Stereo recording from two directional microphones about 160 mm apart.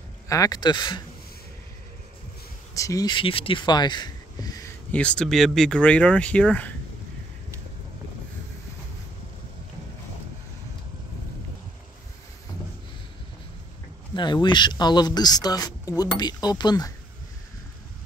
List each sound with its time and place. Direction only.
0.3 s speech: 20° left (ahead or behind)
2.7 s speech: 20° left (ahead or behind)
4.9 s speech: 5° left (ahead or behind)
14.1 s speech: 30° left (ahead or behind)